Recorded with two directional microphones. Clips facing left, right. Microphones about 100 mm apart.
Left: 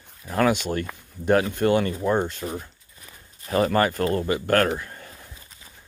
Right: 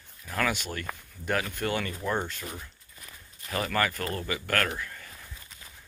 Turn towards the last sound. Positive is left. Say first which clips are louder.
# left 1 dB
turn(degrees=30)  # may be behind; listen again after turning